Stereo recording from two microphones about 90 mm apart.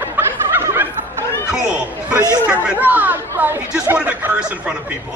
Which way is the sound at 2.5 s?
20° right (ahead or behind).